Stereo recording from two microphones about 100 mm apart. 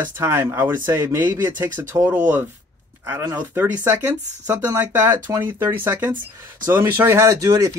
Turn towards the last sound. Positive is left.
turn(degrees=-35)  # may be behind; listen again after turning